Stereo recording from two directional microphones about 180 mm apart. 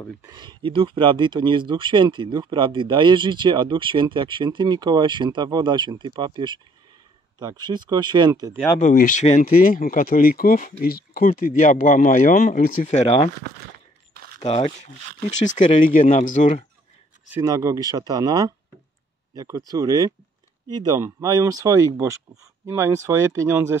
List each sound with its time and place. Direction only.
0.2 s speech: 25° right (ahead or behind)
8.7 s speech: 45° left (ahead or behind)
14.4 s speech: 40° left (ahead or behind)
17.3 s speech: 15° right (ahead or behind)